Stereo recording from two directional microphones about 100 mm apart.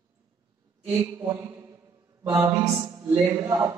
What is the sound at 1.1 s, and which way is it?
Speech, 30° right (ahead or behind).